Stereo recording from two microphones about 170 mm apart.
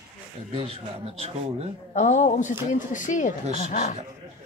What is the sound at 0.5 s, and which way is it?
Speech, 35° right (ahead or behind).